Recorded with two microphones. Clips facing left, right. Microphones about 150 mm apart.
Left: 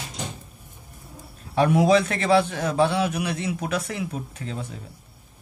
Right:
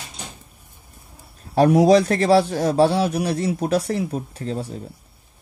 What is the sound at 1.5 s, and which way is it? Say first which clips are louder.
A man's voice: right 4 dB; 40° right (ahead or behind).